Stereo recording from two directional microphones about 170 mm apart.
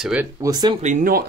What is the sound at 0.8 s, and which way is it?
Speech, 45° right (ahead or behind).